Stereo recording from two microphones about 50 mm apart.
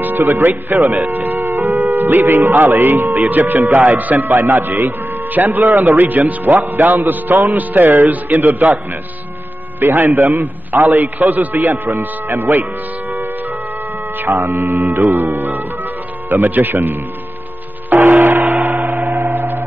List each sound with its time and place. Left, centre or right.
0.0 s speech: right
1.0 s a sound: right
2.1 s a man's voice: right
9.8 s a man's voice: right
14.4 s a man's voice: right
17.8 s a sound: right
19.1 s gong: right